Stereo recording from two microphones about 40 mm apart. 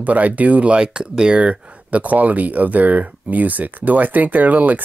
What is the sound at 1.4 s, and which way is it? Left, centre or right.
Speech, right.